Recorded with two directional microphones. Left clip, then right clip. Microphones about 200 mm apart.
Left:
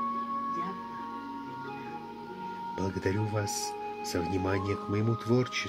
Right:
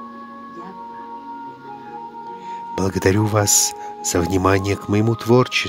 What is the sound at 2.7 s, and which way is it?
Speech, 55° right (ahead or behind).